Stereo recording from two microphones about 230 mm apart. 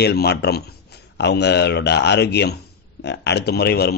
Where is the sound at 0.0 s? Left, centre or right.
Left.